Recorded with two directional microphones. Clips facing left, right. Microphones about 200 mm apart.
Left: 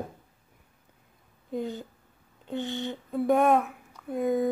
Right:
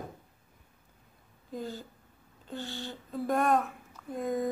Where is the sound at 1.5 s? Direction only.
20° left (ahead or behind).